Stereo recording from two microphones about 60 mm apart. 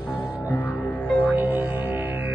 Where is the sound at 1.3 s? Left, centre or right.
Right.